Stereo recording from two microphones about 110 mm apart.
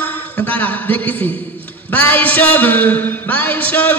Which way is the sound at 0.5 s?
15° left (ahead or behind).